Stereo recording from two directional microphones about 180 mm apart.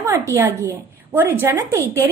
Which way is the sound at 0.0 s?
15° right (ahead or behind).